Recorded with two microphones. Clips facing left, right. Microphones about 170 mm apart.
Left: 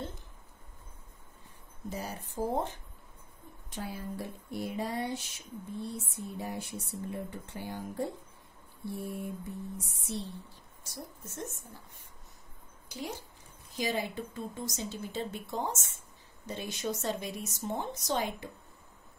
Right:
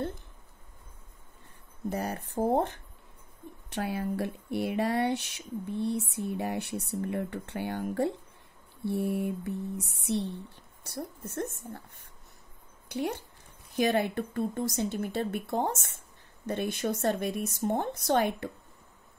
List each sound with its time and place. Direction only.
1.9 s speech: 60° right (ahead or behind)
12.8 s speech: 60° right (ahead or behind)